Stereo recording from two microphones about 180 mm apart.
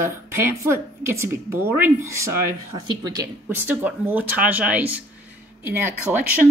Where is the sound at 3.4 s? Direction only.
10° right (ahead or behind).